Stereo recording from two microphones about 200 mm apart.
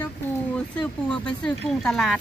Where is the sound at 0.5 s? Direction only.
5° left (ahead or behind).